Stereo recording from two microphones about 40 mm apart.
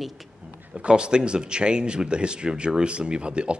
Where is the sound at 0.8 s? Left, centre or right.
Right.